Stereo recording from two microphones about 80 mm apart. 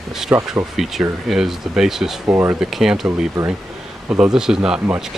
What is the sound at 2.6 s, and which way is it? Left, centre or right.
Speech, centre.